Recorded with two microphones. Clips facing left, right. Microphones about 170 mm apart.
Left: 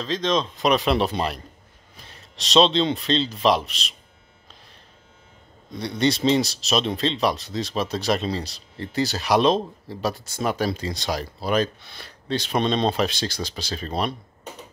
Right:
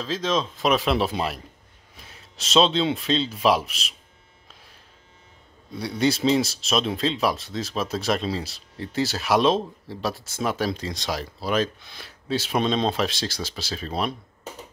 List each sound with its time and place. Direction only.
0.0 s speech: 5° right (ahead or behind)
5.7 s speech: 5° right (ahead or behind)